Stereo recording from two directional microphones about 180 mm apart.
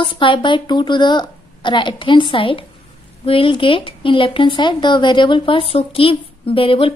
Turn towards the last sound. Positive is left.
turn(degrees=30)  # may be behind; listen again after turning